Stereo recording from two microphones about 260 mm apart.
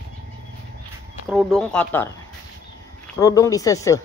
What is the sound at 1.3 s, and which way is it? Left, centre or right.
Speech, centre.